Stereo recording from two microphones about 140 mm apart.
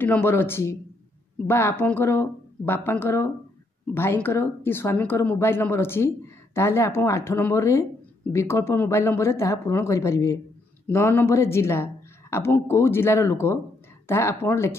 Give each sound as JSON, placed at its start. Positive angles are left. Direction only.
{"t": 0.0, "sound": "speech", "side_deg": 15}